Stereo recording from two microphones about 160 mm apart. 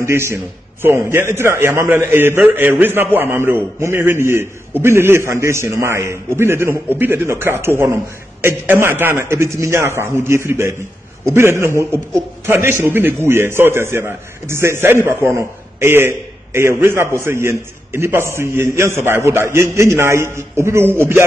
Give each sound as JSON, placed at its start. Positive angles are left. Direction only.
{"t": 0.0, "sound": "a man's voice", "side_deg": -15}